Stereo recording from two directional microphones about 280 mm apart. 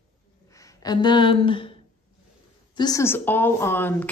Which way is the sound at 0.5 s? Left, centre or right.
Centre.